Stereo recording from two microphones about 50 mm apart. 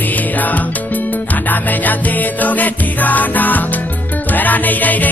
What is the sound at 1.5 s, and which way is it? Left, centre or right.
Music, left.